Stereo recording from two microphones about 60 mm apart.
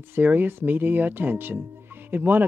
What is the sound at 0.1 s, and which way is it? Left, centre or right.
Speech, right.